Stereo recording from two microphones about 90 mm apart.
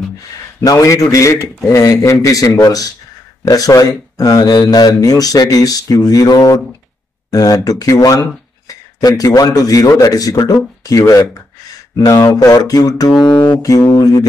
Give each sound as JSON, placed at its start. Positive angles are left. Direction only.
{"t": 0.6, "sound": "speech", "side_deg": 35}